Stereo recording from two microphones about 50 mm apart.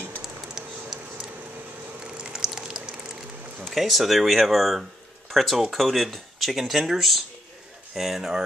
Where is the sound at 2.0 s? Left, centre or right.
Centre.